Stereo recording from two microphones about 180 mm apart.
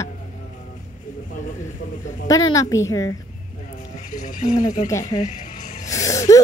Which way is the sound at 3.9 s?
45° left (ahead or behind).